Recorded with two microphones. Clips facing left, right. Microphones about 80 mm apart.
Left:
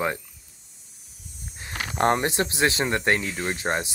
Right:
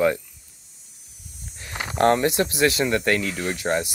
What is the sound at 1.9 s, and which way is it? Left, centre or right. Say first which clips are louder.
Speech: right 3 dB; left.